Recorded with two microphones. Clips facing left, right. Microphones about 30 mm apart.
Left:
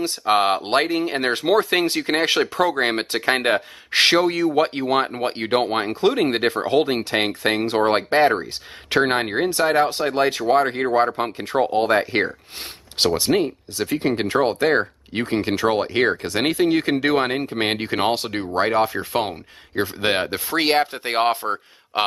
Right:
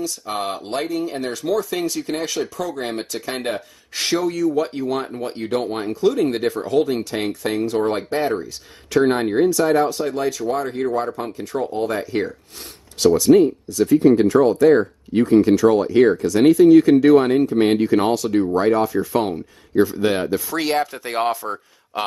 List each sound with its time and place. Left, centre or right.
0.0 s speech: left